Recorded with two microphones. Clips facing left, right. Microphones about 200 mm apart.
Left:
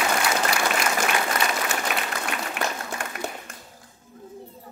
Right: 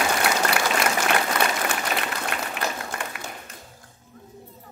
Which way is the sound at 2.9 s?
60° right (ahead or behind).